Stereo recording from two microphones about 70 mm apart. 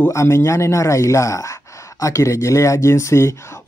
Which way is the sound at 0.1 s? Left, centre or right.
Left.